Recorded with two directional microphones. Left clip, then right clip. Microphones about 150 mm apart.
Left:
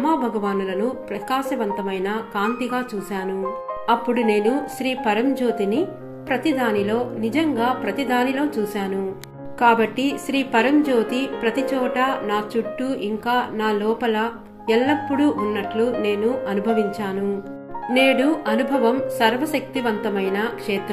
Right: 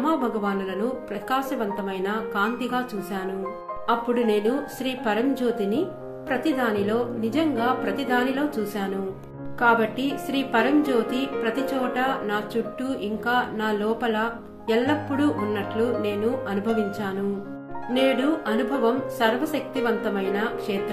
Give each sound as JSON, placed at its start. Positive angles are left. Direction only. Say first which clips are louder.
{"t": 0.0, "sound": "a woman's voice", "louder": "left 3 dB", "side_deg": 20}
{"t": 3.8, "sound": "a woman's voice", "louder": "left 3 dB", "side_deg": 20}
{"t": 9.6, "sound": "a woman's voice", "louder": "left 3 dB", "side_deg": 25}